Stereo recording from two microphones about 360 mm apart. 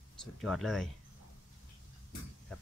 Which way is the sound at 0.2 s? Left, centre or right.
Centre.